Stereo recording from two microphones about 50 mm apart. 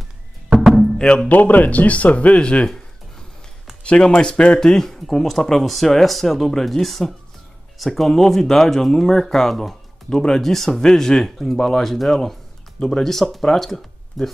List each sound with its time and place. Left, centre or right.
0.6 s music: centre
0.9 s speech: centre
1.3 s speech: left; by 2.8 s centre
3.8 s speech: centre